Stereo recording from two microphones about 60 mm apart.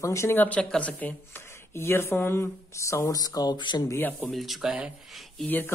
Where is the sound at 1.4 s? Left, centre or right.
Left.